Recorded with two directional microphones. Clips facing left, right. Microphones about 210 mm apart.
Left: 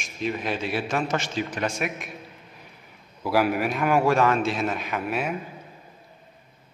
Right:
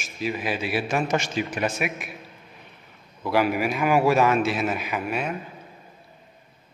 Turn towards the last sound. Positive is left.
turn(degrees=5)  # may be behind; listen again after turning